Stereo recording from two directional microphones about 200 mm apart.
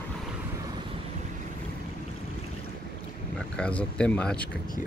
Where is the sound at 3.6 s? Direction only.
5° left (ahead or behind).